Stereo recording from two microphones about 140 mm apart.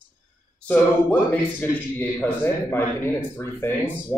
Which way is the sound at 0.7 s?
10° left (ahead or behind).